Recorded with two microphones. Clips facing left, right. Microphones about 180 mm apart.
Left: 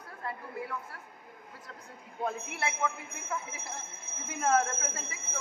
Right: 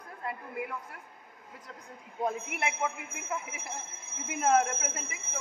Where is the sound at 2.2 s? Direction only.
20° right (ahead or behind).